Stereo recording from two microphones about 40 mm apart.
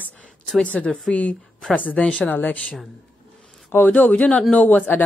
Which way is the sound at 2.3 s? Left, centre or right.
Left.